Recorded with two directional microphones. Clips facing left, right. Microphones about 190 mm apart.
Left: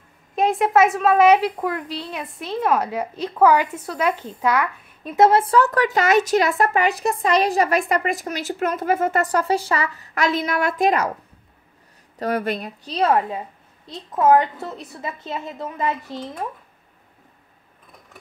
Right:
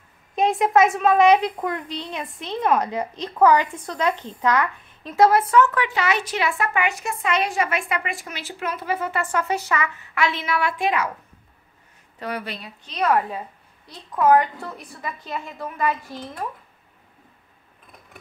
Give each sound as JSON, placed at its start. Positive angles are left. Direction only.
{"t": 0.4, "sound": "a woman's voice", "side_deg": 0}
{"t": 5.1, "sound": "speech", "side_deg": 25}
{"t": 12.2, "sound": "speech", "side_deg": 45}
{"t": 12.9, "sound": "a woman's voice", "side_deg": 25}